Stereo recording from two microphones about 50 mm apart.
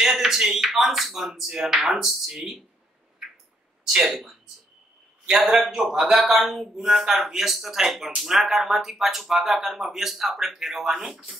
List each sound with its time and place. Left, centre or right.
0.0 s speech: centre
4.1 s speech: centre
5.5 s speech: centre